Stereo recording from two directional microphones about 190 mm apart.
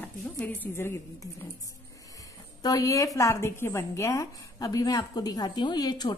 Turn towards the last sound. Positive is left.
turn(degrees=20)  # may be behind; listen again after turning